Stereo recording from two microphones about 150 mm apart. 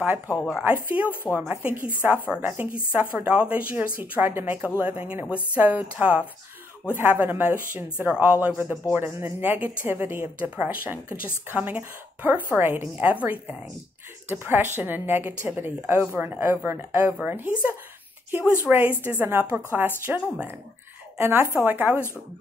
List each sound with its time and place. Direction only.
0.7 s a woman's voice: 10° right (ahead or behind)